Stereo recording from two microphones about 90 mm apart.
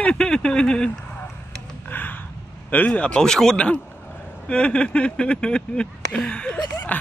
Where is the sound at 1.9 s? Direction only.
20° left (ahead or behind).